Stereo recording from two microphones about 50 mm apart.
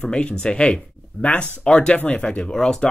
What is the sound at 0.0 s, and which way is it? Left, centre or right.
Speech, centre.